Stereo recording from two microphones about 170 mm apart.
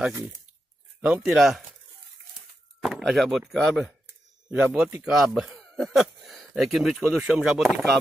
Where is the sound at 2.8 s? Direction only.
Centre (ahead or behind).